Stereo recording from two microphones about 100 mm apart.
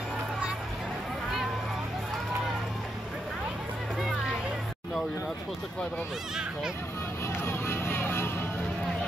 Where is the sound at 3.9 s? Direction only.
Centre (ahead or behind).